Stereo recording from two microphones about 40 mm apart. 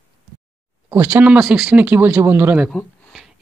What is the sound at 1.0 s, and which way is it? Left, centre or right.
Speech, right.